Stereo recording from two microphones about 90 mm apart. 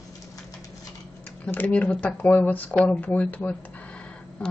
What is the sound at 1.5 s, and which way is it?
A woman's voice, 20° left (ahead or behind).